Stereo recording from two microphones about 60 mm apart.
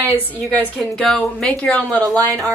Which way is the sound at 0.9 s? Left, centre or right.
Centre.